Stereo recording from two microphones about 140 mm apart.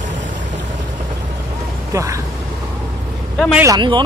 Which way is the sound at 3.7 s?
35° right (ahead or behind).